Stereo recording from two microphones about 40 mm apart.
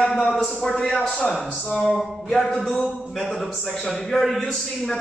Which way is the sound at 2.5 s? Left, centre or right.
Centre.